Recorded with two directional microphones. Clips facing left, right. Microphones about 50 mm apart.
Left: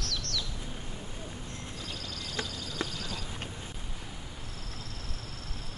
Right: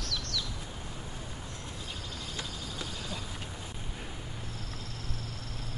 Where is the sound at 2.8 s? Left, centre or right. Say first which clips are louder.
Left 7 dB; left.